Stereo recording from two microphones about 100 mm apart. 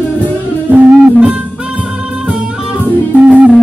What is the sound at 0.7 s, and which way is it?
Music, 15° right (ahead or behind).